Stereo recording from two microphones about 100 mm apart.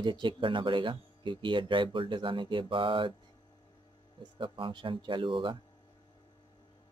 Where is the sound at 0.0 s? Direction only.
55° right (ahead or behind).